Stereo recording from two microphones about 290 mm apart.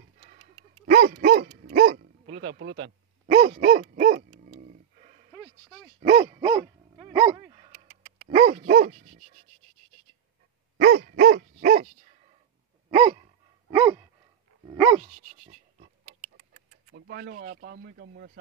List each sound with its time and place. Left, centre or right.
0.2 s dog: centre; by 2.9 s right
3.3 s dog: right
4.5 s a sound: right
5.3 s bow-wow: centre
5.9 s dog: right
10.8 s dog: right
12.9 s gasp: centre
14.7 s dog: centre
15.0 s a sound: right
16.9 s speech: right